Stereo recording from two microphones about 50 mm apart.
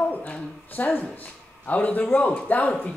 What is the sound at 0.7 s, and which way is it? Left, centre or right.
Speech, left.